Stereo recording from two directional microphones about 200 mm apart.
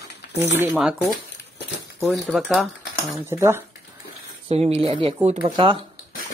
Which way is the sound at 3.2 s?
15° right (ahead or behind).